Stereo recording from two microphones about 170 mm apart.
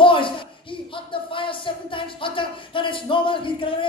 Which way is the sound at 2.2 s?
30° left (ahead or behind).